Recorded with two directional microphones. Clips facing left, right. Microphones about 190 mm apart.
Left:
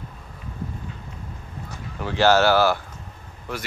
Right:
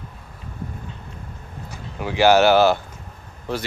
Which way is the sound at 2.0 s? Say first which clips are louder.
Right 3 dB; 15° right (ahead or behind).